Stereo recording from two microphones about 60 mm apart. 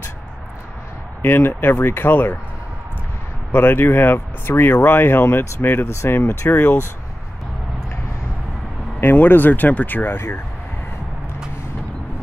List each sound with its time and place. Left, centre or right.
1.2 s speech: left
3.5 s speech: left
9.0 s speech: left